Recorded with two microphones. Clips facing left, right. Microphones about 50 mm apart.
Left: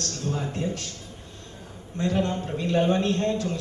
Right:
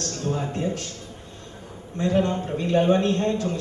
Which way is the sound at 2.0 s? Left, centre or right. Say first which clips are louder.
Right 3 dB; centre.